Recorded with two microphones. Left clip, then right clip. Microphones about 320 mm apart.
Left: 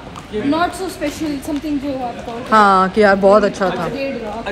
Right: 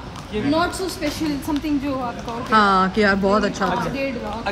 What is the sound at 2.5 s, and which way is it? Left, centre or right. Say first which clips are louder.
Speech: left 5 dB; centre.